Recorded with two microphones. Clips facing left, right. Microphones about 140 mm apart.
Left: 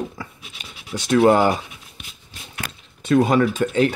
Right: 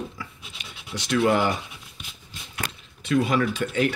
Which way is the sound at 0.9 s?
50° left (ahead or behind).